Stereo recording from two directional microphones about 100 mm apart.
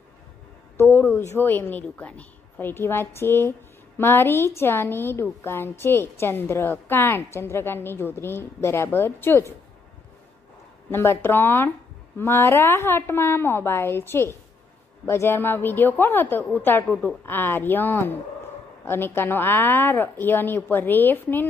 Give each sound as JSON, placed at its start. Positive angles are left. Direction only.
{"t": 0.7, "sound": "a woman's voice", "side_deg": 25}
{"t": 10.9, "sound": "a woman's voice", "side_deg": 25}